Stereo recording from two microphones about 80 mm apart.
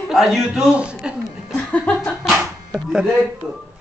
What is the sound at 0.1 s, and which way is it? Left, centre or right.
Speech, centre.